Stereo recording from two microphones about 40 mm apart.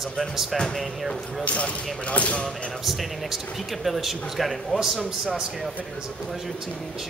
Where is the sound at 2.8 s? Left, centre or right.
Centre.